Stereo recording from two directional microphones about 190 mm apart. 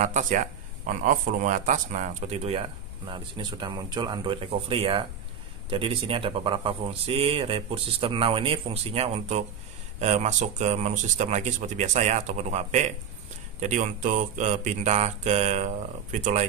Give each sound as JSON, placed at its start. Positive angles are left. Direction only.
{"t": 0.0, "sound": "speech", "side_deg": -40}